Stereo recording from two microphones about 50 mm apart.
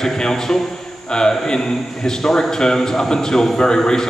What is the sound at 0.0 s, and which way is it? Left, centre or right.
A man's voice, centre.